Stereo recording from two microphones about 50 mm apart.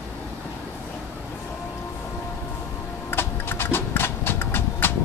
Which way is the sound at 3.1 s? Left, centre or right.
Left.